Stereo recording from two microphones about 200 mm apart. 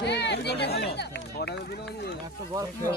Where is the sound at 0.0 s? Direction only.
60° left (ahead or behind).